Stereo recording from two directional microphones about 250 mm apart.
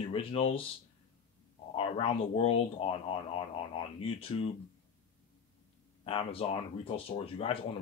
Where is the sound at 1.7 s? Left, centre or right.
Left.